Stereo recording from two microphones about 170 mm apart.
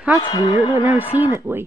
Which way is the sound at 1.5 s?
15° right (ahead or behind).